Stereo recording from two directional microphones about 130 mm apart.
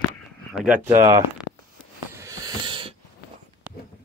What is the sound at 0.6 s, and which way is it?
Speech, 15° right (ahead or behind).